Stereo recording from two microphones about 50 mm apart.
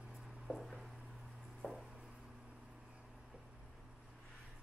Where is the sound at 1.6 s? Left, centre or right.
Left.